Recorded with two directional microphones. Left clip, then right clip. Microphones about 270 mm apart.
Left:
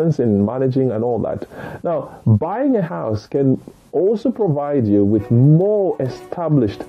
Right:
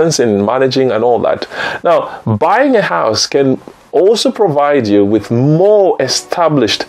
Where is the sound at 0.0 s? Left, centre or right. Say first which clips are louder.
Right 7 dB; centre.